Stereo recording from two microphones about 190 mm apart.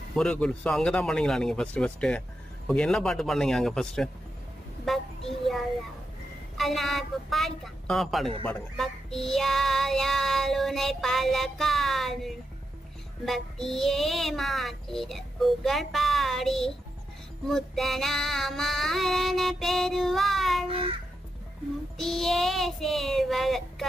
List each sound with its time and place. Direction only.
0.1 s child singing: 5° left (ahead or behind)
6.5 s child singing: centre (ahead or behind)
20.6 s a sound: 30° right (ahead or behind)
21.9 s child singing: centre (ahead or behind)